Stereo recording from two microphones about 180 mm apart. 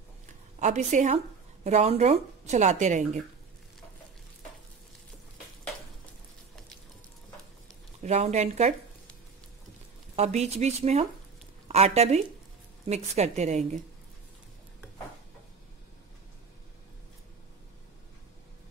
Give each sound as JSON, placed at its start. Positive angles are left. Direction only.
{"t": 0.6, "sound": "speech", "side_deg": -40}
{"t": 8.0, "sound": "speech", "side_deg": -40}
{"t": 10.1, "sound": "a woman's voice", "side_deg": -40}